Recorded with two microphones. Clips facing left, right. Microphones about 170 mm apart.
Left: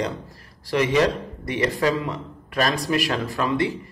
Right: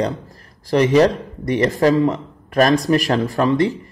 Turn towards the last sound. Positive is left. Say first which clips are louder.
# right 6 dB
turn(degrees=-40)  # may be behind; listen again after turning